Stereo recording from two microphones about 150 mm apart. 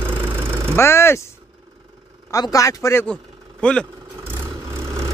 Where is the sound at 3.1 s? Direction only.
5° left (ahead or behind).